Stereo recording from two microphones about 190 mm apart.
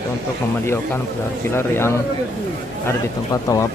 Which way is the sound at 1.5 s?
15° left (ahead or behind).